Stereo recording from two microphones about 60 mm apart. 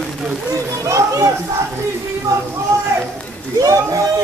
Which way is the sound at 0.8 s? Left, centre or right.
Right.